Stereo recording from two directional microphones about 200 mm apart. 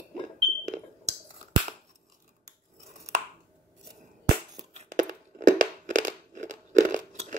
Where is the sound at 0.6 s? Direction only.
35° right (ahead or behind).